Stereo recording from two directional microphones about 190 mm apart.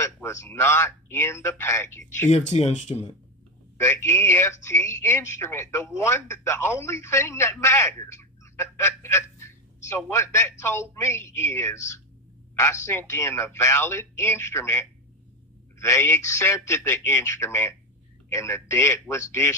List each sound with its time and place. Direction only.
0.0 s a woman's voice: 15° left (ahead or behind)
2.2 s speech: 35° left (ahead or behind)
3.7 s a woman's voice: 15° left (ahead or behind)
15.8 s a woman's voice: 10° left (ahead or behind)